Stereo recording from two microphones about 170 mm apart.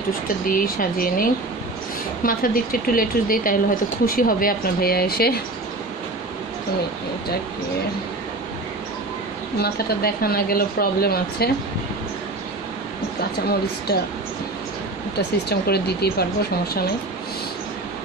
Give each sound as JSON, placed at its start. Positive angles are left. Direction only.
{"t": 0.5, "sound": "speech", "side_deg": 55}
{"t": 9.6, "sound": "speech", "side_deg": 60}
{"t": 15.1, "sound": "speech", "side_deg": 70}